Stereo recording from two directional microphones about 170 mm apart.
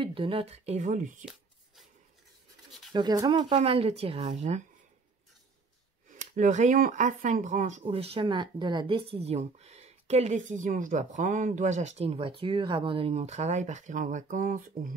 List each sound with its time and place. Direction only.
0.0 s speech: 30° right (ahead or behind)
2.9 s speech: 25° right (ahead or behind); by 4.6 s 40° right (ahead or behind)
6.0 s speech: 45° right (ahead or behind)